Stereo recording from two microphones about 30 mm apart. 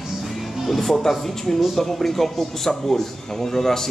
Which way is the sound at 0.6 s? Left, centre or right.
Centre.